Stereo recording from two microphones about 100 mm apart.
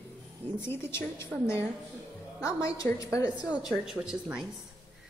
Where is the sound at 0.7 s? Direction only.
25° left (ahead or behind).